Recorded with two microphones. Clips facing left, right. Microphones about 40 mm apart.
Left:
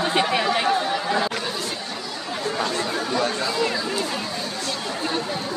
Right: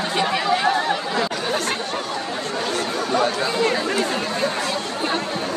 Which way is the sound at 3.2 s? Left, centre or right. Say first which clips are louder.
Right 3 dB; centre.